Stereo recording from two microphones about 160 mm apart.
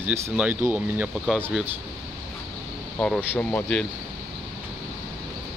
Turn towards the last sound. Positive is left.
turn(degrees=10)  # may be behind; listen again after turning